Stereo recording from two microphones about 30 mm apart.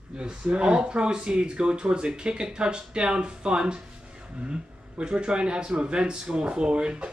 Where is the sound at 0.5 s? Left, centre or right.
Right.